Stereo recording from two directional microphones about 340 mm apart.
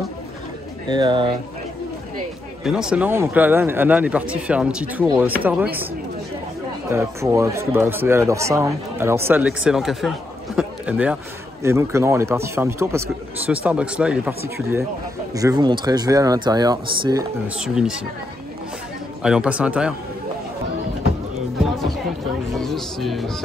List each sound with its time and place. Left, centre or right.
0.8 s speech: centre
2.6 s speech: centre
6.9 s speech: centre
19.2 s speech: centre
21.5 s music: centre
22.5 s speech: centre